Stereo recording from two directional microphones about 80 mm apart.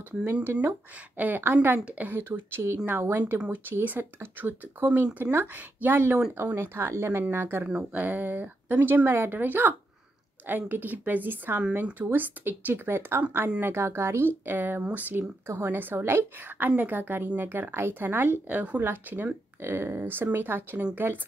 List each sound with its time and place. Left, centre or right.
0.3 s speech: right
3.3 s speech: centre